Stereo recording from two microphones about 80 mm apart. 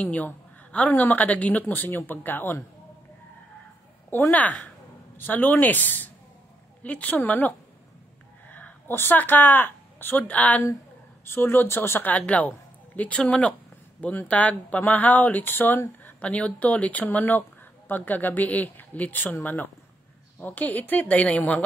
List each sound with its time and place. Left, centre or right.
0.0 s speech: centre
4.3 s speech: centre